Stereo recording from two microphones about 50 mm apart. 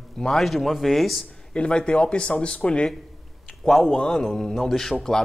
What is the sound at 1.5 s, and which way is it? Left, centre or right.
Speech, centre.